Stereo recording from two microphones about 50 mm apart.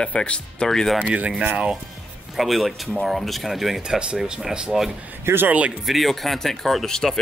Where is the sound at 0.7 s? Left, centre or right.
Centre.